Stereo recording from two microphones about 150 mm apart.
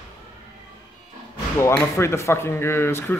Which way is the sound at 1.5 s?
15° left (ahead or behind).